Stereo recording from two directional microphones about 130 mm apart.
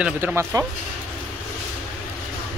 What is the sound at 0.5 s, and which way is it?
Speech, 25° right (ahead or behind).